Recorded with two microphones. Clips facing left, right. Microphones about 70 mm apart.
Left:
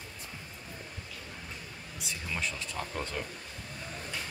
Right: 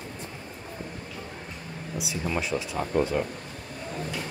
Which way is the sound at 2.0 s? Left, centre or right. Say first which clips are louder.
Right 6 dB; centre.